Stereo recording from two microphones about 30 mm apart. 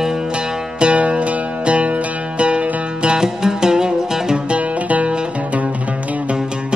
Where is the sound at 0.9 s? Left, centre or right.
Right.